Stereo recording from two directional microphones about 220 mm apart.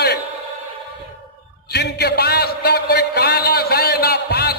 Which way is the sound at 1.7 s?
50° left (ahead or behind).